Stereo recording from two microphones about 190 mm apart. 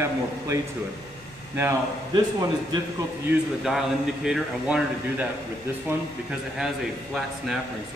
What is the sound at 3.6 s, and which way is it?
A man's voice, centre (ahead or behind).